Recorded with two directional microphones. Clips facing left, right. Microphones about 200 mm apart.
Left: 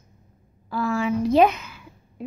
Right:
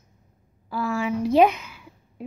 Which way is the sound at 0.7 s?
10° right (ahead or behind).